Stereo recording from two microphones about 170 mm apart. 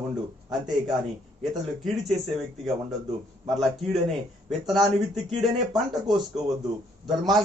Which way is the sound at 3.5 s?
Centre (ahead or behind).